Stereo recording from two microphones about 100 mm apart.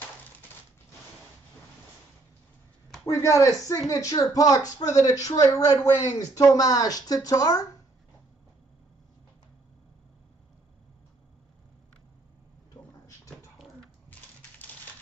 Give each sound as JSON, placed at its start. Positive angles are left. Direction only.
{"t": 3.1, "sound": "speech", "side_deg": 30}
{"t": 12.7, "sound": "drawer open or close", "side_deg": 40}